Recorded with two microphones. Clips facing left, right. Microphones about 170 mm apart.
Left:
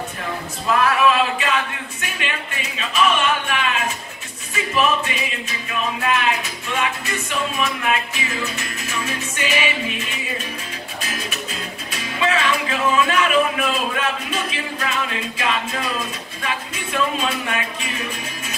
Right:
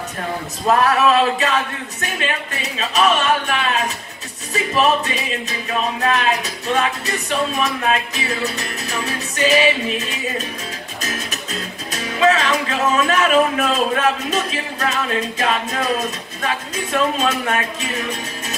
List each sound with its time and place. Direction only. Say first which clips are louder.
0.7 s music: right 2 dB; 40° right (ahead or behind)
11.9 s speech: right 5 dB; 40° right (ahead or behind)